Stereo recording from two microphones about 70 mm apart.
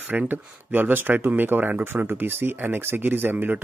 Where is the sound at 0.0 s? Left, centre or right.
Right.